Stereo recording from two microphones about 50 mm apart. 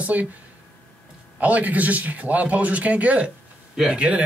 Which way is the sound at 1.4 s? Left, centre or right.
Right.